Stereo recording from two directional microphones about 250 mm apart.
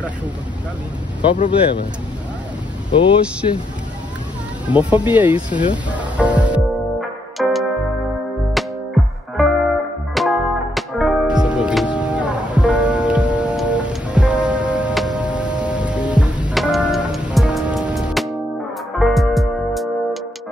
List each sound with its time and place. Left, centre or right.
1.2 s speech: centre
3.4 s speech: left
4.6 s speech: centre
5.9 s music: centre